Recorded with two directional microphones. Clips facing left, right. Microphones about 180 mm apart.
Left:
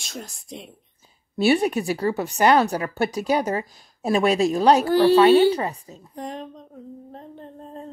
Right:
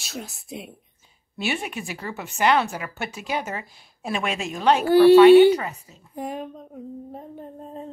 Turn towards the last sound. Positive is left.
turn(degrees=-5)  # may be behind; listen again after turning